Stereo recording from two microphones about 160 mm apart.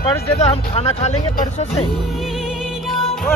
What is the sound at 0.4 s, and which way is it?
Speech, 40° left (ahead or behind).